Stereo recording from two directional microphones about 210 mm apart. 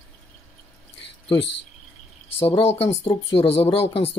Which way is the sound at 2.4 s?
30° left (ahead or behind).